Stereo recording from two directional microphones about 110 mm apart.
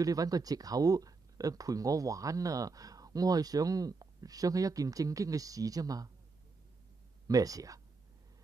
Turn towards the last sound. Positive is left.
turn(degrees=-30)  # may be behind; listen again after turning